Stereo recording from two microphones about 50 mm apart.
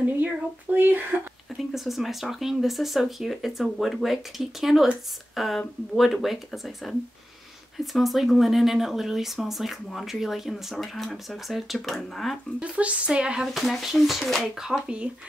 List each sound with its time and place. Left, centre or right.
0.0 s speech: right
1.6 s speech: centre
12.5 s speech: right
13.5 s speech: centre
14.6 s speech: centre